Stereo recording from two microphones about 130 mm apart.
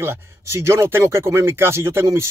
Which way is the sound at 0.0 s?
20° right (ahead or behind).